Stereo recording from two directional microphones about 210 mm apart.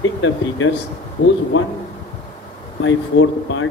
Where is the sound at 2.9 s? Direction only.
70° left (ahead or behind).